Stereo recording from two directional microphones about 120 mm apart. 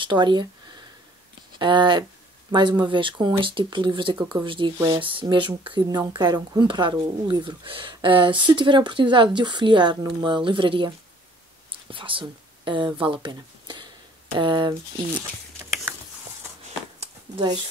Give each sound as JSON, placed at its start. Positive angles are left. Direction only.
{"t": 0.0, "sound": "speech", "side_deg": -40}
{"t": 1.6, "sound": "speech", "side_deg": -40}
{"t": 11.9, "sound": "speech", "side_deg": -45}